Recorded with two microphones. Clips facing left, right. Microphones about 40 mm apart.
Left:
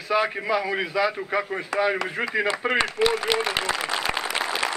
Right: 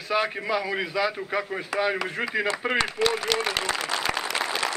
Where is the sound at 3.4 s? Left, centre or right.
Centre.